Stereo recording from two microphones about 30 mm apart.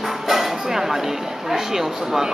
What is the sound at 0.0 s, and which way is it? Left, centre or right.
Speech, centre.